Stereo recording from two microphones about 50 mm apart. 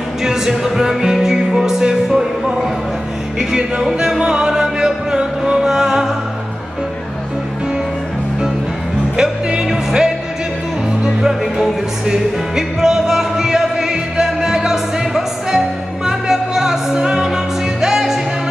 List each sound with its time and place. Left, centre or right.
0.2 s music: centre
3.3 s speech: centre
4.2 s music: centre
9.1 s music: centre